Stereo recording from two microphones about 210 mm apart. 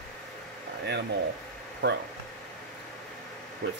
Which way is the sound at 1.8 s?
55° right (ahead or behind).